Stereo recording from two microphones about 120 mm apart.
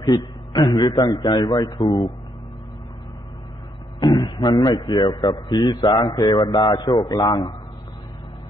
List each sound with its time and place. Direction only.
0.0 s a man's voice: 35° left (ahead or behind)
4.0 s a man's voice: 35° left (ahead or behind)